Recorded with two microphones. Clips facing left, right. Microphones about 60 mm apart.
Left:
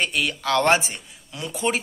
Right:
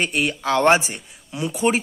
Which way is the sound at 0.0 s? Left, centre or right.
Right.